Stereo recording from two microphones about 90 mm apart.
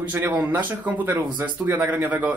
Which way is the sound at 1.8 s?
20° right (ahead or behind).